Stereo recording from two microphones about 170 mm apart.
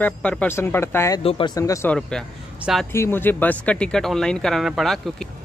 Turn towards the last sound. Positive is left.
turn(degrees=0)  # may be behind; listen again after turning